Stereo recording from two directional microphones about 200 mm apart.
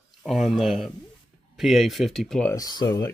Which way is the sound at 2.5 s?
20° left (ahead or behind).